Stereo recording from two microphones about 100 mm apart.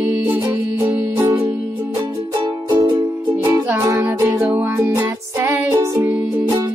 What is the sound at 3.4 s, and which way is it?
Music, 20° right (ahead or behind).